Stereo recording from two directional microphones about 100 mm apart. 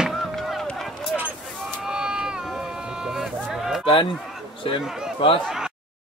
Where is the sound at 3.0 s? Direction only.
5° right (ahead or behind).